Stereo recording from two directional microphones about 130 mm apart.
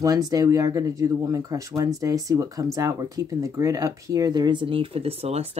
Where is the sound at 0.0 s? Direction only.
30° right (ahead or behind).